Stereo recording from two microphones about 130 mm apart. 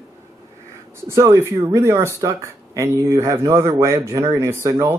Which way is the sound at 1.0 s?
20° right (ahead or behind).